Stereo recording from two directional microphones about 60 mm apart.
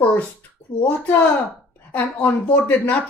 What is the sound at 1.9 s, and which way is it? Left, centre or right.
A woman's voice, left.